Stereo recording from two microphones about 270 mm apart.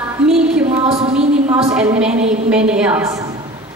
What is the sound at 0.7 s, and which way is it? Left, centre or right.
Music, right.